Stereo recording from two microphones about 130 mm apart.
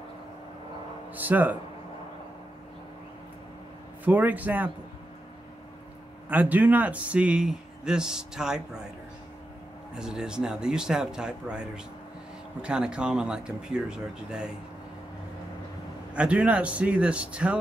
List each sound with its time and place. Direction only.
1.1 s speech: 15° right (ahead or behind)
4.0 s speech: 15° right (ahead or behind)
6.2 s speech: 10° right (ahead or behind)
9.9 s speech: 5° right (ahead or behind)
16.2 s speech: 10° right (ahead or behind)